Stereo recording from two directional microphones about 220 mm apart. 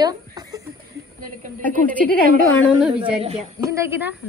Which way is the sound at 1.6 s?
5° left (ahead or behind).